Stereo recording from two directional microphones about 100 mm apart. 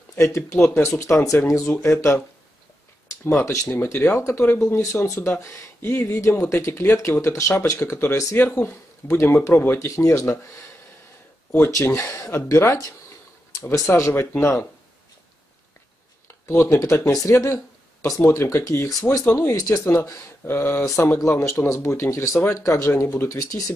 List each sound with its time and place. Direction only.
0.1 s speech: 25° left (ahead or behind)
3.6 s speech: 20° left (ahead or behind)
8.4 s speech: 20° left (ahead or behind)
11.5 s speech: 20° left (ahead or behind)
16.4 s speech: 30° left (ahead or behind)